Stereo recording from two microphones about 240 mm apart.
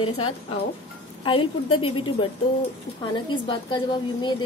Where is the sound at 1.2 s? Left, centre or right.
Left.